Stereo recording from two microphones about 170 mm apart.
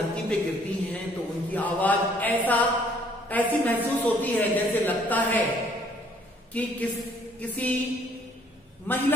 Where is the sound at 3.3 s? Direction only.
10° left (ahead or behind).